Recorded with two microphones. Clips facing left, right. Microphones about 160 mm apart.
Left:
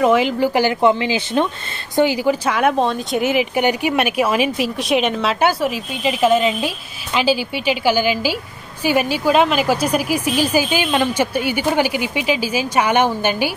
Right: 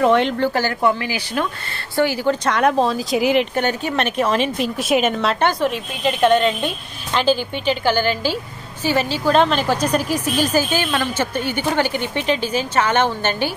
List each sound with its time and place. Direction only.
0.0 s a woman's voice: 5° left (ahead or behind)
0.5 s a woman's voice: 15° left (ahead or behind); by 3.4 s centre (ahead or behind)
3.5 s a woman's voice: 10° left (ahead or behind)